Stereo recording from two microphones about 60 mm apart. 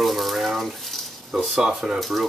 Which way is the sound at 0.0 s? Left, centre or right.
Centre.